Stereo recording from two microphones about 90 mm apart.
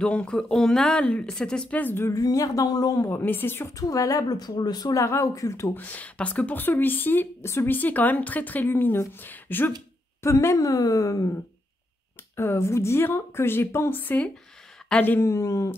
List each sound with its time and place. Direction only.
0.0 s speech: 10° left (ahead or behind)
2.0 s a woman's voice: 40° left (ahead or behind)
3.1 s a woman's voice: 20° left (ahead or behind)
3.7 s a woman's voice: 40° left (ahead or behind)
5.8 s a woman's voice: 20° left (ahead or behind); by 11.3 s 40° left (ahead or behind)
12.4 s a woman's voice: 30° left (ahead or behind)